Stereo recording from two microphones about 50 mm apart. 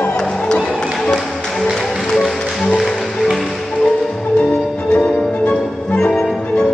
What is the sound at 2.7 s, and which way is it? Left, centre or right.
Music, centre.